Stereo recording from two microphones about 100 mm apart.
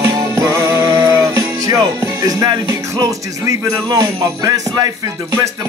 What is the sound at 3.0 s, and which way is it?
Jingle bell, 40° right (ahead or behind).